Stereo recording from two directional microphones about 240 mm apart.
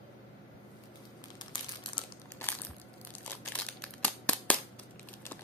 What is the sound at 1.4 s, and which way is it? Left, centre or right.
Crumpling, centre.